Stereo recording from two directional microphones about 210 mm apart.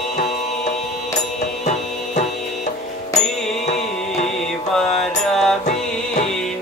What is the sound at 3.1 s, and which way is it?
Music, 30° left (ahead or behind).